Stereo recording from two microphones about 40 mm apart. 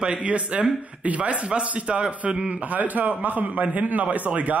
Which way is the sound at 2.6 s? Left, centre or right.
Right.